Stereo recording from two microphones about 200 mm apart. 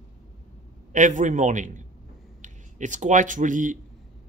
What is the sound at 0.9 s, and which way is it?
Speech, 40° right (ahead or behind).